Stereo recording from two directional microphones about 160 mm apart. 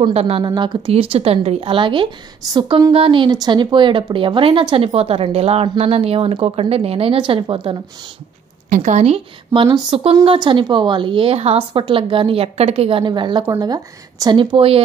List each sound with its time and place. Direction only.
0.1 s speech: 40° right (ahead or behind)
2.9 s speech: 35° right (ahead or behind)
8.6 s speech: 55° right (ahead or behind); by 14.8 s 35° right (ahead or behind)